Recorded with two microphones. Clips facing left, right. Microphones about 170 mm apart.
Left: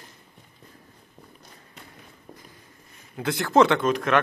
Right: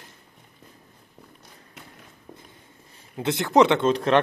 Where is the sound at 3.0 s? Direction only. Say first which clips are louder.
Right 2 dB; 25° right (ahead or behind).